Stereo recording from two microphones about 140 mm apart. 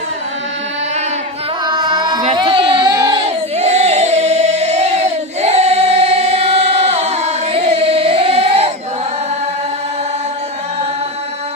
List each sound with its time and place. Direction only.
1.7 s carnatic music: 30° right (ahead or behind)
2.3 s a sound: 40° right (ahead or behind)
3.5 s singing: 50° right (ahead or behind)